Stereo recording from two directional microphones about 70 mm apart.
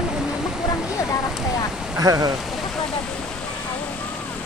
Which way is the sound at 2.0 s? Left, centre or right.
Right.